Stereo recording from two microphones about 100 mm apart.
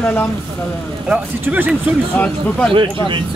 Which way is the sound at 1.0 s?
15° right (ahead or behind).